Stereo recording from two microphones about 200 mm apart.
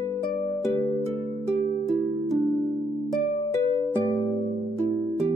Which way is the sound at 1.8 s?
Centre (ahead or behind).